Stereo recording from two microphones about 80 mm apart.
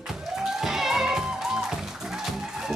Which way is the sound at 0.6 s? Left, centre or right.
Centre.